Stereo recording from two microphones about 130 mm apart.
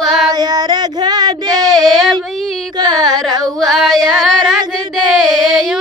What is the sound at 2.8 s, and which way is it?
Carnatic music, 30° right (ahead or behind).